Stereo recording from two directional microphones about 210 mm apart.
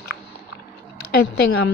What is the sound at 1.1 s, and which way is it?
Speech, 50° left (ahead or behind).